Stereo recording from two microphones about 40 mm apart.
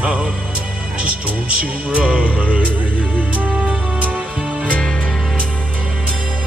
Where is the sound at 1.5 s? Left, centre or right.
Right.